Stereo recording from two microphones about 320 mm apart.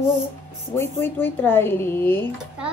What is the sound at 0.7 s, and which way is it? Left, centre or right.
Speech, centre.